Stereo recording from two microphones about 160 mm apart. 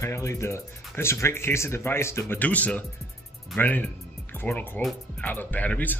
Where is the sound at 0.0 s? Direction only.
20° left (ahead or behind).